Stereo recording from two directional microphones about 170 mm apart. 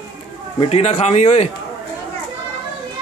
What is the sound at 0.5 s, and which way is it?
Speech, 40° left (ahead or behind).